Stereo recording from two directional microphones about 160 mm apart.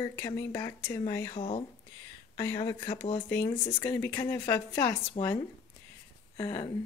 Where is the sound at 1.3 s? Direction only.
35° left (ahead or behind).